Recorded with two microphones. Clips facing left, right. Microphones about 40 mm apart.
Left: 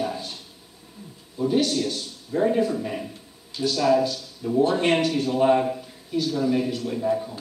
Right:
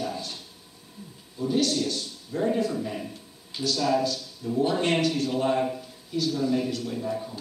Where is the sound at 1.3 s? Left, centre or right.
Centre.